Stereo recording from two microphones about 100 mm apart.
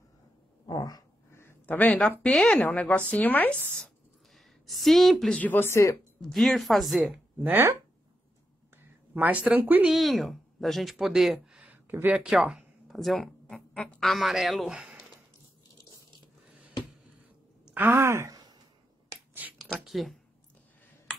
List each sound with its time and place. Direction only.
0.7 s a sound: 40° left (ahead or behind)
1.3 s speech: 25° left (ahead or behind)
2.3 s speech: 5° left (ahead or behind)
2.6 s a woman's voice: 15° left (ahead or behind)
4.6 s speech: centre (ahead or behind)
5.4 s speech: 20° left (ahead or behind)
6.2 s speech: centre (ahead or behind)
7.4 s speech: 20° right (ahead or behind)
9.1 s speech: 15° right (ahead or behind)
9.8 s speech: centre (ahead or behind); by 12.2 s 20° right (ahead or behind)
12.2 s speech: 10° right (ahead or behind)
17.6 s speech: 20° right (ahead or behind)
18.3 s a sound: 40° right (ahead or behind)
19.6 s speech: centre (ahead or behind)